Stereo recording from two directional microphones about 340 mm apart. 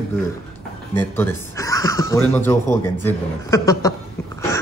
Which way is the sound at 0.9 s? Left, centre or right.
Centre.